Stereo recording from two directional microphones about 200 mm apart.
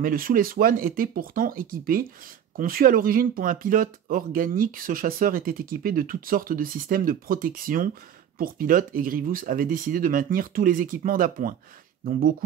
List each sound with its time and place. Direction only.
0.0 s speech: 45° right (ahead or behind)